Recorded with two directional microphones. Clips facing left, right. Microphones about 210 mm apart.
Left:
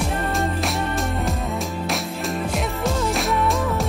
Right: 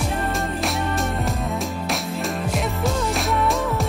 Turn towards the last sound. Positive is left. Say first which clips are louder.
# even
turn(degrees=0)  # may be behind; listen again after turning